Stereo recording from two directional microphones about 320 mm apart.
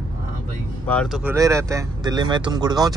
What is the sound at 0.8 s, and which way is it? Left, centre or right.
Speech, centre.